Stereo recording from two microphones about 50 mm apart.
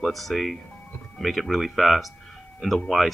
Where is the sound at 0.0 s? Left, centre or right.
Centre.